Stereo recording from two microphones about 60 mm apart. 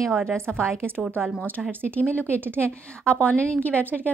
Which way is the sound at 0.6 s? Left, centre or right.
Right.